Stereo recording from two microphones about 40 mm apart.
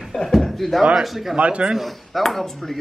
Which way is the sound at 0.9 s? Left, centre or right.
Centre.